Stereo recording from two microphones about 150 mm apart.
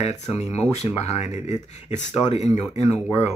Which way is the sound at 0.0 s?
45° left (ahead or behind).